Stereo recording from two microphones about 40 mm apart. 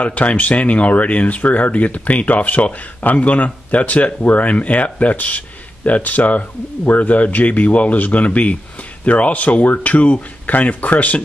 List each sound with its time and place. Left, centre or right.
0.0 s speech: left